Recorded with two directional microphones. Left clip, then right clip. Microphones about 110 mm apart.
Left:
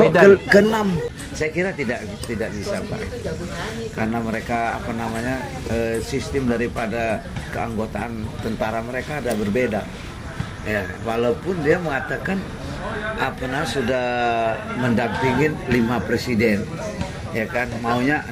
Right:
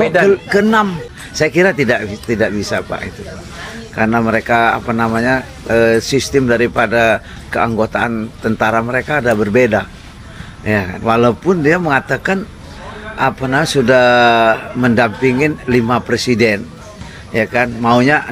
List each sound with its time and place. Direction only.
0.0 s a man's voice: 5° right (ahead or behind)
0.5 s speech: 20° left (ahead or behind)
3.9 s speech: 15° left (ahead or behind)